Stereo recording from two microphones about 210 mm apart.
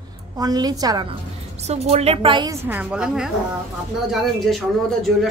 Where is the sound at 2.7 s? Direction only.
5° right (ahead or behind).